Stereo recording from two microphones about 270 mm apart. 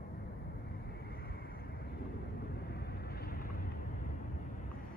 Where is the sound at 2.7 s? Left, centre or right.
Left.